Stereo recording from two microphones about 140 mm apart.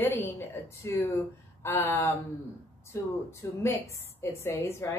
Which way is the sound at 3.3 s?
20° left (ahead or behind).